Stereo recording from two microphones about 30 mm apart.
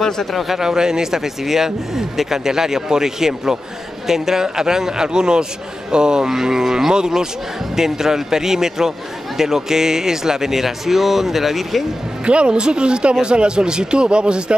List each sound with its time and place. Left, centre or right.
0.3 s a man's voice: centre
0.6 s a man's voice: right
6.2 s speech: centre
12.3 s a man's voice: right